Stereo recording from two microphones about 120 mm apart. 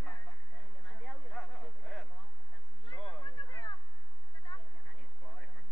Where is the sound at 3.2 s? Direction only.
40° left (ahead or behind).